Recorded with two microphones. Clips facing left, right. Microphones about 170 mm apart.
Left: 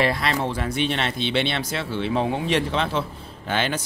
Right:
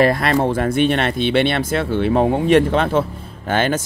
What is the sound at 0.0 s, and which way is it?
Speech, 50° right (ahead or behind).